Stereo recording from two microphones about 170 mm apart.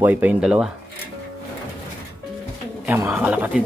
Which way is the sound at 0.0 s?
10° right (ahead or behind).